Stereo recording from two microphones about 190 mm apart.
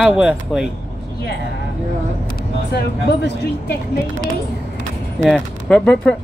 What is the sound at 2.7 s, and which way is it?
Speech, 60° left (ahead or behind).